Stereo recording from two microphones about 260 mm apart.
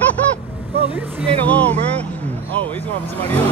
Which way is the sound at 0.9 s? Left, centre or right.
Centre.